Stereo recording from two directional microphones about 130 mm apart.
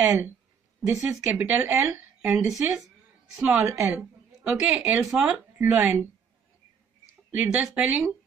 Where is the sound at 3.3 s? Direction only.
10° right (ahead or behind).